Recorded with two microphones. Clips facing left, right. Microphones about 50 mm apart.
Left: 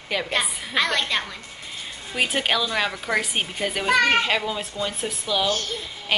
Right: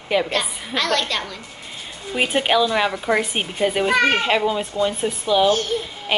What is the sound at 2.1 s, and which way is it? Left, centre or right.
A woman's voice, centre.